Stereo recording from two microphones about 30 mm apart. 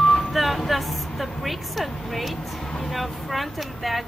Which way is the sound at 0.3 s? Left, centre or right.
Centre.